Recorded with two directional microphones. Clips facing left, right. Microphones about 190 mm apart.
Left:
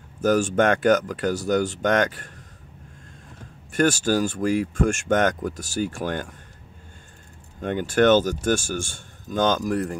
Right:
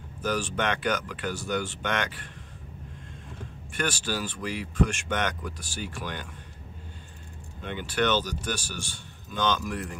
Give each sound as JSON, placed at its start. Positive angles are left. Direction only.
{"t": 0.2, "sound": "speech", "side_deg": 45}
{"t": 3.7, "sound": "speech", "side_deg": 45}
{"t": 7.6, "sound": "speech", "side_deg": 45}